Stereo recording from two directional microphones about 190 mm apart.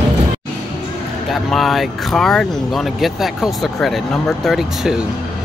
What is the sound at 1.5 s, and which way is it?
Speech, centre (ahead or behind).